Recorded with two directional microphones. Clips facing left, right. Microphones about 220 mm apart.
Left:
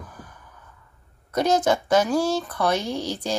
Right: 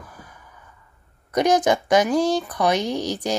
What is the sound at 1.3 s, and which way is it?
Speech, 15° right (ahead or behind).